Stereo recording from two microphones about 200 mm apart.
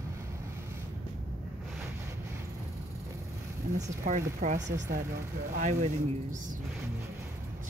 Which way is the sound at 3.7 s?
35° right (ahead or behind).